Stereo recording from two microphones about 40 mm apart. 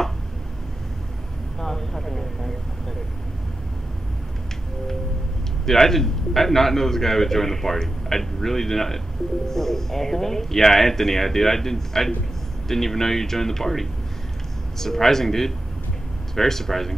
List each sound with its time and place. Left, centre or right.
1.6 s vehicle: centre
5.7 s a man's voice: centre